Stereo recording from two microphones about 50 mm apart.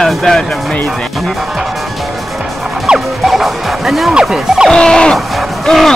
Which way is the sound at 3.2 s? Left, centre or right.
Centre.